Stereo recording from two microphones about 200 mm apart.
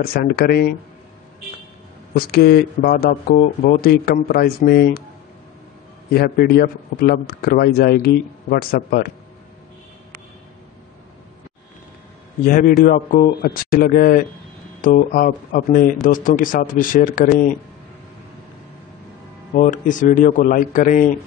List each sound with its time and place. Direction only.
0.0 s a man's voice: 50° left (ahead or behind)
2.1 s a man's voice: 50° left (ahead or behind)
6.1 s a man's voice: 50° left (ahead or behind)
12.4 s a man's voice: 45° left (ahead or behind)
19.5 s a man's voice: 40° left (ahead or behind)